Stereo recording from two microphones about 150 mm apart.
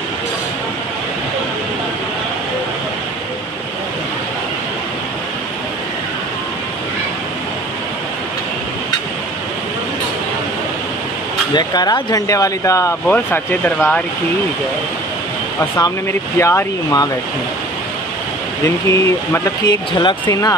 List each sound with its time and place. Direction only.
11.5 s speech: 30° left (ahead or behind); by 14.0 s 5° left (ahead or behind)
15.7 s speech: 15° left (ahead or behind)
18.9 s speech: 20° left (ahead or behind)